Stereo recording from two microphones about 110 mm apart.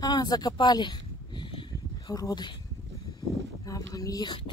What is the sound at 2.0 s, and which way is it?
Speech, 35° left (ahead or behind).